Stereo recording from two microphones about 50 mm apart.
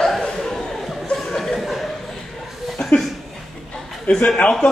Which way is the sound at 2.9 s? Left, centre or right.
Left.